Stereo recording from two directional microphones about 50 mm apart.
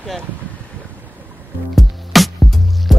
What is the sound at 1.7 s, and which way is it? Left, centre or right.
Music, centre.